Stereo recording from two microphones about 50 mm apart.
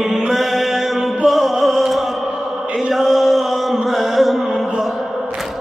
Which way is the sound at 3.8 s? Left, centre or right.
Centre.